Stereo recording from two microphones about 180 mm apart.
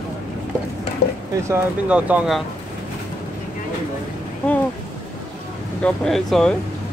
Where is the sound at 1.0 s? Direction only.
60° left (ahead or behind).